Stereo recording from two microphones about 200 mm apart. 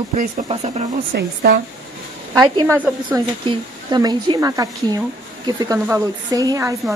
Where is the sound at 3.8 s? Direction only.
20° right (ahead or behind).